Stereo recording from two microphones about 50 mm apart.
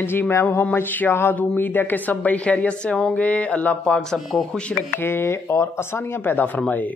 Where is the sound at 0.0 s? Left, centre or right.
Left.